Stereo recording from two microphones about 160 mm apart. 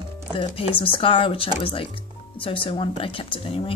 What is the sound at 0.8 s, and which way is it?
Speech, 35° left (ahead or behind).